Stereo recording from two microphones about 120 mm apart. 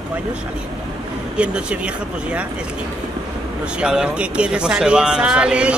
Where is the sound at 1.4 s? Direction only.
10° right (ahead or behind).